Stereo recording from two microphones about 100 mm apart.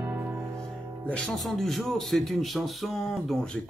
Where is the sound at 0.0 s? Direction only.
15° right (ahead or behind).